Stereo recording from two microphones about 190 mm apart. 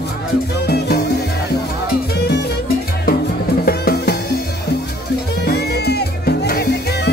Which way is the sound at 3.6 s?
55° left (ahead or behind).